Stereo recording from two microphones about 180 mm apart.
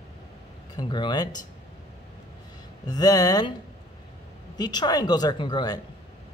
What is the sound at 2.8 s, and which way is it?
Speech, 20° left (ahead or behind).